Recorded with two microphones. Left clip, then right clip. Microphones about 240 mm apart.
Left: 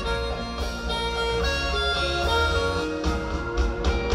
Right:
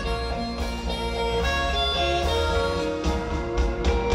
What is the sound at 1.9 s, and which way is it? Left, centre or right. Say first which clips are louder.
Music: right 1 dB; left.